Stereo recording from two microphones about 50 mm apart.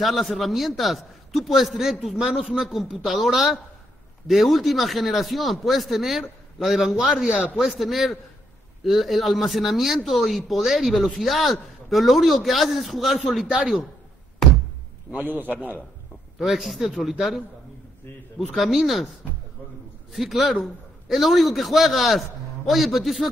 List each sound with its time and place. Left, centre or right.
0.0 s a man's voice: centre
15.1 s a man's voice: right
16.3 s a man's voice: centre
18.5 s a man's voice: centre
20.1 s a man's voice: centre